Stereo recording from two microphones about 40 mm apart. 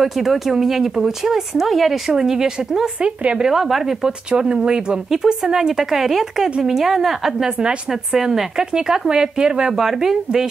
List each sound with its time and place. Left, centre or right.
0.0 s speech: centre
4.3 s a woman's voice: centre
7.4 s a woman's voice: centre